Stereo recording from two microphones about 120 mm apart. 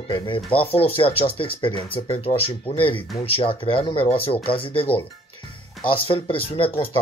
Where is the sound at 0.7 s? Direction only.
50° left (ahead or behind).